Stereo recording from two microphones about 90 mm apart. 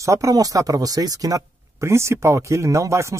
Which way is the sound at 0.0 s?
35° right (ahead or behind).